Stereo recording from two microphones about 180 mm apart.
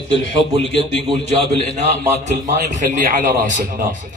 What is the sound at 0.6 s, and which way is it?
Speech, 90° left.